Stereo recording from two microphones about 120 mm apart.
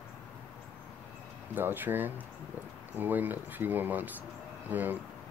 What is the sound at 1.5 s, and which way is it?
Speech, 15° right (ahead or behind).